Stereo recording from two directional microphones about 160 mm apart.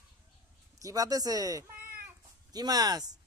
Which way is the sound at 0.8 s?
20° right (ahead or behind).